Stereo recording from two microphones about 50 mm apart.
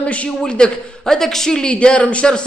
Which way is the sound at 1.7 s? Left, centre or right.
Left.